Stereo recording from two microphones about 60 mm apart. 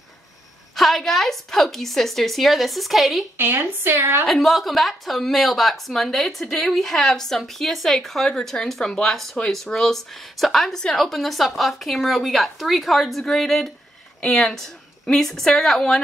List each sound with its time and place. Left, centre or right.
0.7 s a woman's voice: centre
3.3 s a woman's voice: right
4.3 s a woman's voice: centre